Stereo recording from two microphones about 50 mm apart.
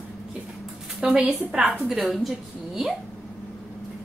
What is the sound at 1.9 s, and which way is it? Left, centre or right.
Speech, centre.